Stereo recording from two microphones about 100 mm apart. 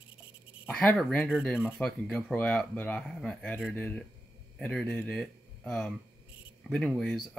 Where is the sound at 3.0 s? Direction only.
5° left (ahead or behind).